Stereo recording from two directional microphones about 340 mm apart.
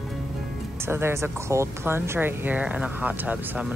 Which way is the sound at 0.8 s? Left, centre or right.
Centre.